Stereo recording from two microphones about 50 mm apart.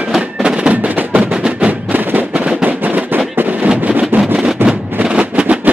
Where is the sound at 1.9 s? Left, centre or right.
Right.